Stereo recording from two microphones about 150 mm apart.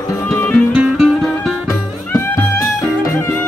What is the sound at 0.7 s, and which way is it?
Music, centre (ahead or behind).